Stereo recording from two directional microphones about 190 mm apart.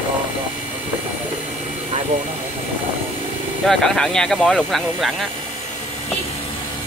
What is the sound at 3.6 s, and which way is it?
Speech, 5° left (ahead or behind).